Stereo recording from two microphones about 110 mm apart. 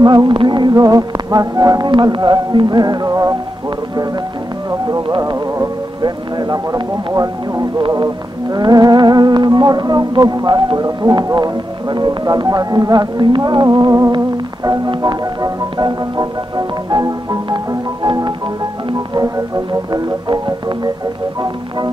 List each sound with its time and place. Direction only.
0.0 s music: 40° right (ahead or behind)
4.6 s music: 30° right (ahead or behind)
6.0 s music: 40° right (ahead or behind)
7.9 s music: 35° right (ahead or behind)
20.2 s music: 40° right (ahead or behind)